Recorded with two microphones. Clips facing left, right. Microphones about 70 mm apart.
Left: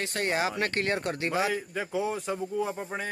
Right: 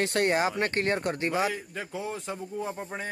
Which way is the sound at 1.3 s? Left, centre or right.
Centre.